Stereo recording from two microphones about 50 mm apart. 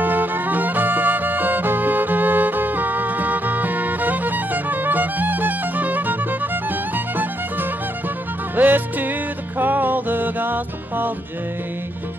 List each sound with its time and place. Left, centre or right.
0.0 s music: right
8.5 s music: right